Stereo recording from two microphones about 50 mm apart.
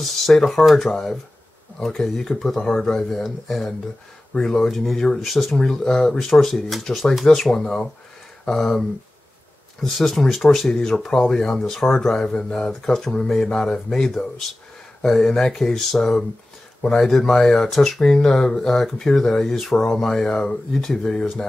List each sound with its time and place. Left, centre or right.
0.0 s speech: centre
7.6 s speech: centre